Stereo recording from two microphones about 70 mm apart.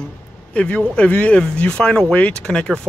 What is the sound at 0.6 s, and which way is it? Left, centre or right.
Speech, centre.